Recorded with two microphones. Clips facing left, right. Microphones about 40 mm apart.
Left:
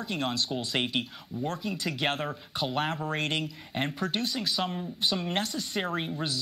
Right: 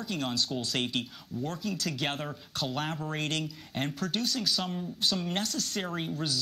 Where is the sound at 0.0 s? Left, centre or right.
Centre.